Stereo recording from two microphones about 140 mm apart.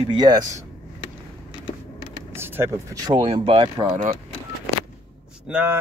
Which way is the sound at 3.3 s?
40° right (ahead or behind).